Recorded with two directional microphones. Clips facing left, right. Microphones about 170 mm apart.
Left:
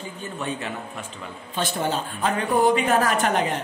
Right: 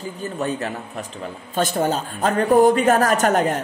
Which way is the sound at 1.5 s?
45° right (ahead or behind).